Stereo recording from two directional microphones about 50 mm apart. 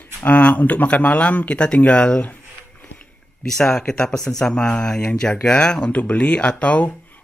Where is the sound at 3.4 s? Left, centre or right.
Centre.